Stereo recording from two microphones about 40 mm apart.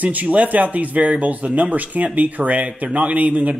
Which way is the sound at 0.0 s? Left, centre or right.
Right.